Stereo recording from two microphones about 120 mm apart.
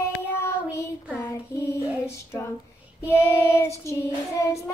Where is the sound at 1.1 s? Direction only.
25° left (ahead or behind).